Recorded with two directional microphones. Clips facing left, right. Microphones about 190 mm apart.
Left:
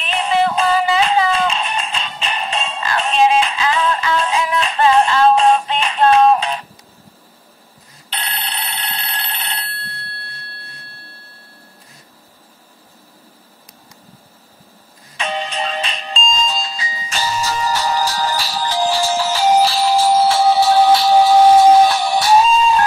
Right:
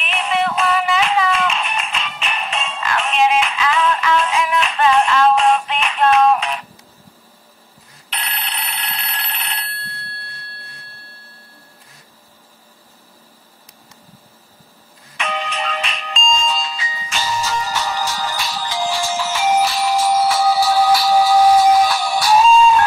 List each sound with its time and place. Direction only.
0.0 s music: 30° left (ahead or behind)
8.1 s telephone bell ringing: 30° left (ahead or behind)
15.1 s music: 30° left (ahead or behind)